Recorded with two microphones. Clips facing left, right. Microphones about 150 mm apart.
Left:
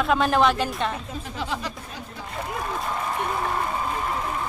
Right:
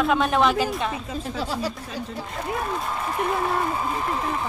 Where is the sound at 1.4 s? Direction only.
35° right (ahead or behind).